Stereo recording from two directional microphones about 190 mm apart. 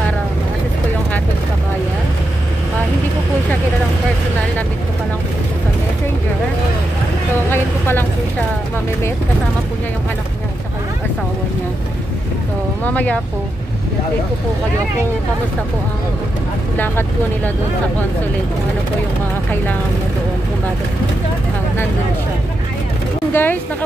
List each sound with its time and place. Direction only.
12.8 s speech: 10° left (ahead or behind)
16.7 s speech: 10° left (ahead or behind)
23.3 s speech: 10° left (ahead or behind)